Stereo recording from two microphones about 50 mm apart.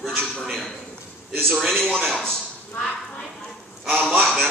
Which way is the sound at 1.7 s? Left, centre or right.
Centre.